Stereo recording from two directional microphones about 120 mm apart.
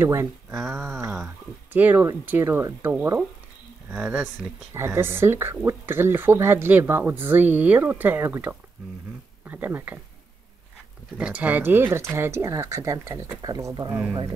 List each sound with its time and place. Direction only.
0.0 s speech: 20° right (ahead or behind)
0.5 s a sound: 5° right (ahead or behind)
1.1 s speech: 10° right (ahead or behind)
4.7 s speech: 20° right (ahead or behind)
11.1 s speech: 10° right (ahead or behind); by 14.0 s 30° right (ahead or behind)